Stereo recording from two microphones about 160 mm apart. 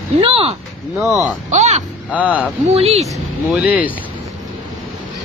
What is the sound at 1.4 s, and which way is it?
Speech, 45° right (ahead or behind).